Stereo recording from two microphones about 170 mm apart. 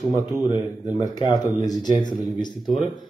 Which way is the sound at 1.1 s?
25° left (ahead or behind).